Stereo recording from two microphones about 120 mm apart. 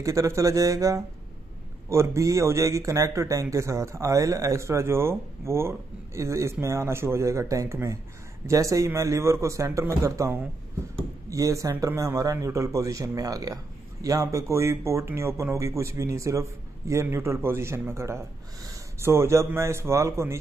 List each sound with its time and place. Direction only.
0.0 s speech: 25° right (ahead or behind)